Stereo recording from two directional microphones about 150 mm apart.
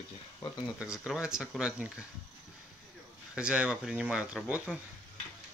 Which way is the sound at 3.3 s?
5° right (ahead or behind).